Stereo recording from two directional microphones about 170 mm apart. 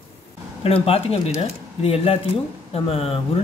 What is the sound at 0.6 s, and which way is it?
Speech, 35° left (ahead or behind).